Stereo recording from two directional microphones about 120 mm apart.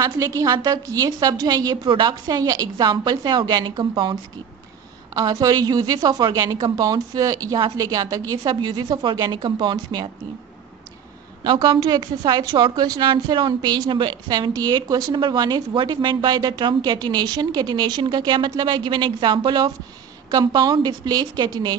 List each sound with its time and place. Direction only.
0.0 s a woman's voice: 25° right (ahead or behind)
11.4 s a woman's voice: 40° right (ahead or behind)